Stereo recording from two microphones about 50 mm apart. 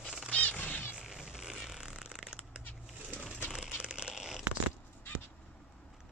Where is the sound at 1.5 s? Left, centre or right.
Centre.